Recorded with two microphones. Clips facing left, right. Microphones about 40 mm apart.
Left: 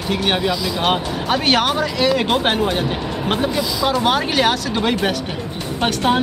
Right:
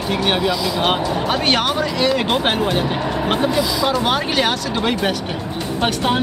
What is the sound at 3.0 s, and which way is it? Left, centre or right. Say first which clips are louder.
Speech: right 3 dB; centre.